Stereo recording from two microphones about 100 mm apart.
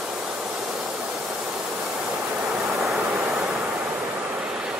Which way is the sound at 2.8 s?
Centre (ahead or behind).